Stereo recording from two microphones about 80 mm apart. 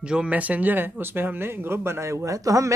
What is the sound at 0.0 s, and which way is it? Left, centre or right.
Speech, centre.